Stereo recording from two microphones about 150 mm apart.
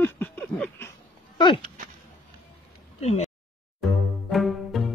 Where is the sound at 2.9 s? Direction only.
50° left (ahead or behind).